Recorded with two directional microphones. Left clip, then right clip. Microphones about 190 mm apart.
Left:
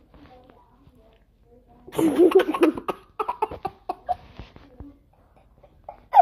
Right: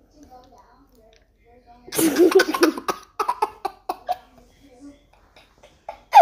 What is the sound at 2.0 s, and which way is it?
Cough, centre (ahead or behind).